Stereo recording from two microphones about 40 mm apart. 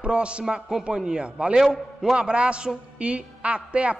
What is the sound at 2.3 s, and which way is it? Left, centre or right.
A man's voice, right.